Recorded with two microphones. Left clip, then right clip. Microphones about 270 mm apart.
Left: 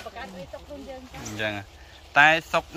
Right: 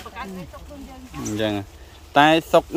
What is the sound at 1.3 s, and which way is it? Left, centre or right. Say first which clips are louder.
Speech: right 5 dB; right.